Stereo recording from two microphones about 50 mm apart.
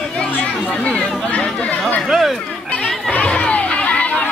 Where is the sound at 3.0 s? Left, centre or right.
Left.